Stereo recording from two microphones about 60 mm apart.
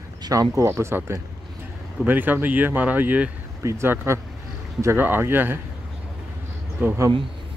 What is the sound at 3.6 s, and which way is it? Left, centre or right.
Speech, right.